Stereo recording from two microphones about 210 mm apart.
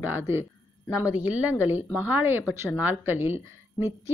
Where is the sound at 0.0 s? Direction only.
10° right (ahead or behind).